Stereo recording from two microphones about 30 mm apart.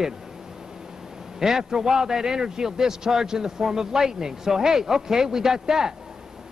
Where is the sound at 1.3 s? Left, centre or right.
Centre.